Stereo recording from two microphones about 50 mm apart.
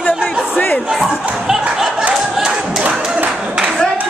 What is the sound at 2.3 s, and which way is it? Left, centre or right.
Clapping, centre.